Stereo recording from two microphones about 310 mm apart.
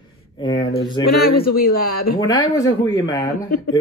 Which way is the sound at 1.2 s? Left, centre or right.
Left.